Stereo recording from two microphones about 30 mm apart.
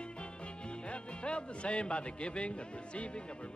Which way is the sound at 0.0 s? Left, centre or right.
Left.